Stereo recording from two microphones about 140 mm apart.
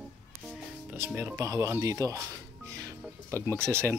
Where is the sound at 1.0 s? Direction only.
15° right (ahead or behind).